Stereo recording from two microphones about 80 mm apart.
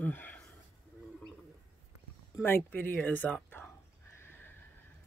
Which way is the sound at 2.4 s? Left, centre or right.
Left.